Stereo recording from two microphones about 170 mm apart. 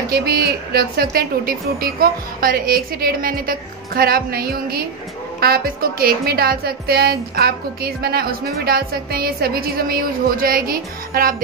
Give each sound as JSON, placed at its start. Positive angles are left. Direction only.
{"t": 0.1, "sound": "speech", "side_deg": -65}